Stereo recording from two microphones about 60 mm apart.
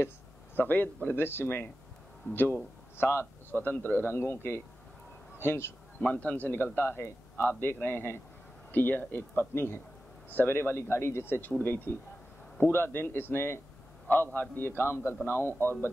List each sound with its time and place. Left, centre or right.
0.6 s a man's voice: left
6.0 s a man's voice: left